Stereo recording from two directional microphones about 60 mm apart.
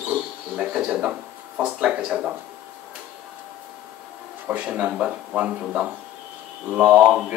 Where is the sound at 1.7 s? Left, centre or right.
Right.